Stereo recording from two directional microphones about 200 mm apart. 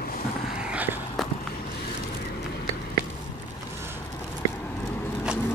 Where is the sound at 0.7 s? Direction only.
5° right (ahead or behind).